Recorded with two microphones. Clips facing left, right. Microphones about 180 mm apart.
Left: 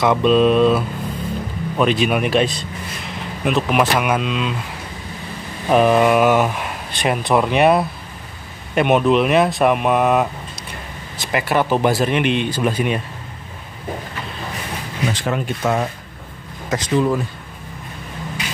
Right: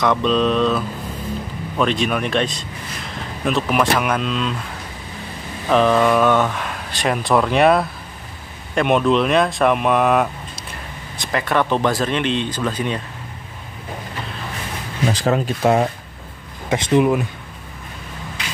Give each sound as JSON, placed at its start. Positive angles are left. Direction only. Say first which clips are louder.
{"t": 0.0, "sound": "speech", "louder": "left 3 dB", "side_deg": 10}
{"t": 5.7, "sound": "speech", "louder": "left 1 dB", "side_deg": 10}
{"t": 15.1, "sound": "speech", "louder": "right 3 dB", "side_deg": -35}